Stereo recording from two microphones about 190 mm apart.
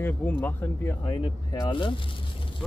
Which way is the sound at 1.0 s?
25° left (ahead or behind).